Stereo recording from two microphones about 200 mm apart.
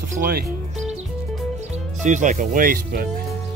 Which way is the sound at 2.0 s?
40° right (ahead or behind).